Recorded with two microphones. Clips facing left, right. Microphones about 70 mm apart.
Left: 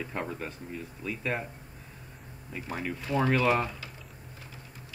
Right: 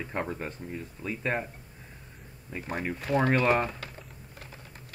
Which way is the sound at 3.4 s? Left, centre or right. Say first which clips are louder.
Right 1 dB; right.